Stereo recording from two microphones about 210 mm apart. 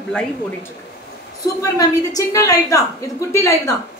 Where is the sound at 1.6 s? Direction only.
15° left (ahead or behind).